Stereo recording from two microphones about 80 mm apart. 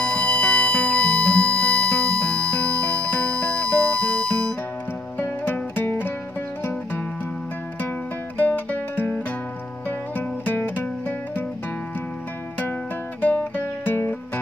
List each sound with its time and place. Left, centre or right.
0.0 s music: centre
5.2 s music: left
8.4 s music: left
13.2 s music: left